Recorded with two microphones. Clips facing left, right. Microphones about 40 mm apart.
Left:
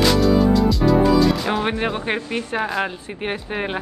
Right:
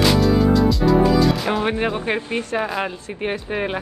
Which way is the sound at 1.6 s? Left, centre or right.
Centre.